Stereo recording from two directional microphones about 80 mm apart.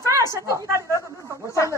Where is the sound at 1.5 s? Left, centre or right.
Left.